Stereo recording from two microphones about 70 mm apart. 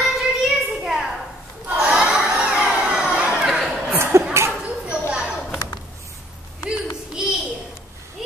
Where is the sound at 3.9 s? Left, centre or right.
Right.